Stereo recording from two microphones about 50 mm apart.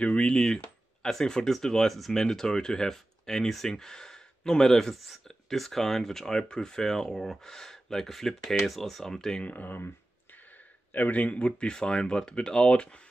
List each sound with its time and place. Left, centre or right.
0.0 s speech: left
9.4 s speech: left
10.9 s speech: left